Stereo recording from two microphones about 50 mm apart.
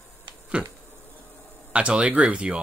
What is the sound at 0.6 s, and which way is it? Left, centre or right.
Speech, right.